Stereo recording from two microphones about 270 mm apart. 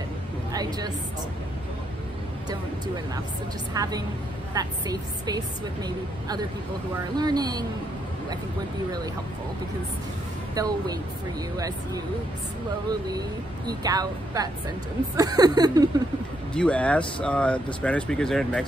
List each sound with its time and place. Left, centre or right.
0.5 s a woman's voice: centre
3.7 s a woman's voice: centre
10.5 s a woman's voice: centre
13.7 s a woman's voice: centre
16.5 s speech: centre